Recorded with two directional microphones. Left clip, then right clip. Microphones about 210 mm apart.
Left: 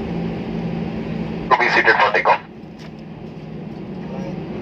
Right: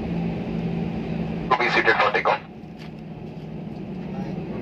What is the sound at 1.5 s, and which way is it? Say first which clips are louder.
Speech: left 5 dB; 30° right (ahead or behind).